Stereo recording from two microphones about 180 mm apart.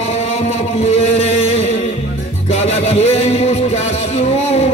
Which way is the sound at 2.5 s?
35° left (ahead or behind).